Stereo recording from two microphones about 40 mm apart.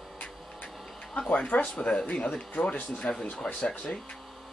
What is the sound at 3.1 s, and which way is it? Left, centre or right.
Speech, left.